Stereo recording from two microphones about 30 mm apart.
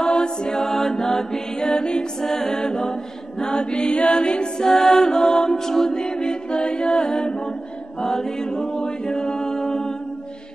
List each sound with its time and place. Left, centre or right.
0.0 s mantra: left
0.6 s mantra: centre; by 2.0 s left
2.2 s music: centre
3.3 s chant: left
4.1 s mantra: left
4.6 s mantra: centre
5.7 s music: centre
5.9 s a capella: left
6.6 s mantra: left
8.0 s chant: centre